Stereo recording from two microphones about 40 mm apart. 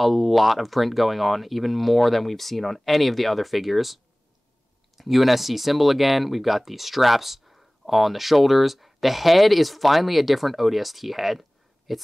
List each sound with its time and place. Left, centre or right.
0.0 s speech: centre